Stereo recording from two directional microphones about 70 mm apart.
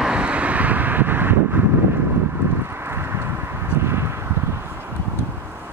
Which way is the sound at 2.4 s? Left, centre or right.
Right.